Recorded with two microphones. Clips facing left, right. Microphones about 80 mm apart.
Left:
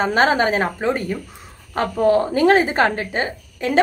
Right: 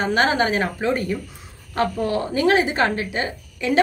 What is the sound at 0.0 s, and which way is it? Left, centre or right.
A woman's voice, left.